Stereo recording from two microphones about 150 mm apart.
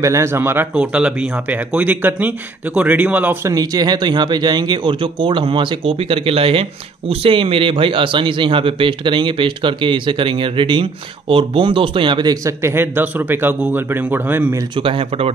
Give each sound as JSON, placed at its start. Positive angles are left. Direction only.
{"t": 0.0, "sound": "speech", "side_deg": -20}
{"t": 3.5, "sound": "speech", "side_deg": -25}
{"t": 14.8, "sound": "speech", "side_deg": -35}